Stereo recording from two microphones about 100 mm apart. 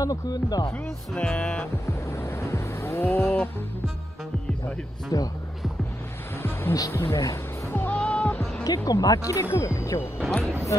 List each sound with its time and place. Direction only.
0.0 s speech: 40° left (ahead or behind)
0.7 s speech: 25° left (ahead or behind)
1.2 s music: 15° left (ahead or behind)
1.9 s music: 25° left (ahead or behind)
5.1 s speech: 40° left (ahead or behind)
6.4 s music: 25° left (ahead or behind)
8.6 s speech: 35° left (ahead or behind)